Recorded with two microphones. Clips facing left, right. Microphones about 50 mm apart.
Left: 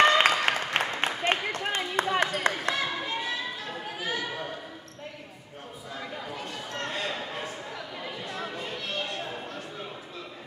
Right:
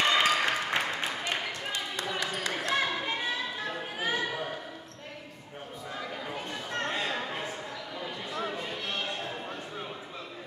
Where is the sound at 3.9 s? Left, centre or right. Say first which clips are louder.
Right 1 dB; right.